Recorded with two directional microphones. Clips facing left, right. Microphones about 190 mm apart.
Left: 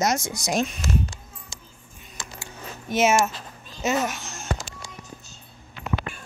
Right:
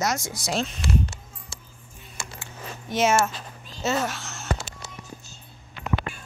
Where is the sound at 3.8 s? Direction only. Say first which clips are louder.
Left 1 dB; 15° left (ahead or behind).